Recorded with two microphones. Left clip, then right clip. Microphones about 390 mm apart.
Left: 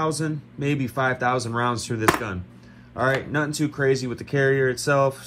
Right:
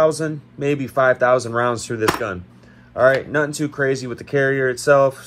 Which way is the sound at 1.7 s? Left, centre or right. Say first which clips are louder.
Right 2 dB; centre.